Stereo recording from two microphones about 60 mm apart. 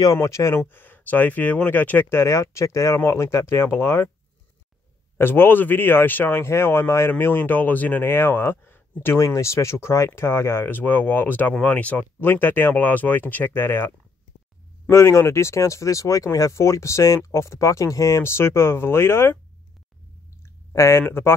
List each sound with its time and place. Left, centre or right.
0.0 s speech: left
0.7 s speech: left
2.1 s speech: left
5.1 s speech: left
9.2 s speech: left
12.2 s speech: left
14.9 s speech: left
18.2 s speech: left
20.4 s a sound: left
21.1 s speech: left